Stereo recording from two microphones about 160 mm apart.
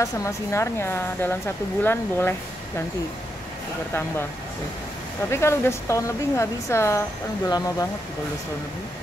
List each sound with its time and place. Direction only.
0.0 s speech: 20° left (ahead or behind)
5.3 s speech: 15° left (ahead or behind)